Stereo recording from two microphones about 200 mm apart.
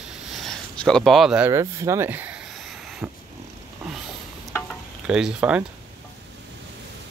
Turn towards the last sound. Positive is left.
turn(degrees=-5)  # may be behind; listen again after turning